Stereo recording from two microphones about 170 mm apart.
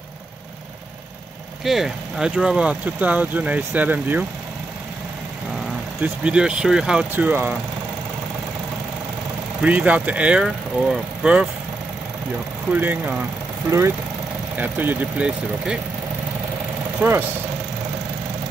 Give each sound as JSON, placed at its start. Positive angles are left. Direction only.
{"t": 1.6, "sound": "speech", "side_deg": 0}
{"t": 6.2, "sound": "speech", "side_deg": -5}
{"t": 9.6, "sound": "speech", "side_deg": -10}
{"t": 12.7, "sound": "speech", "side_deg": -10}
{"t": 17.0, "sound": "speech", "side_deg": -10}